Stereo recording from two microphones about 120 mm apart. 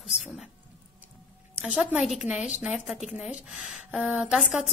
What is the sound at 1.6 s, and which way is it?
A woman's voice, 5° right (ahead or behind).